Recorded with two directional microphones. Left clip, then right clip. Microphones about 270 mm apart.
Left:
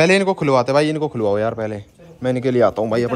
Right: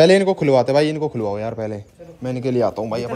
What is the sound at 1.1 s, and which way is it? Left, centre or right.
Speech, left.